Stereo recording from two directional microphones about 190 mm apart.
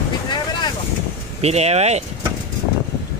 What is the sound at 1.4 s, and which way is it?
Speech, 35° right (ahead or behind).